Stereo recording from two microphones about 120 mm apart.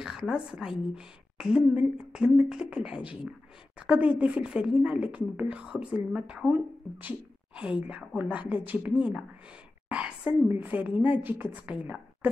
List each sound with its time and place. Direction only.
0.0 s a woman's voice: 5° right (ahead or behind)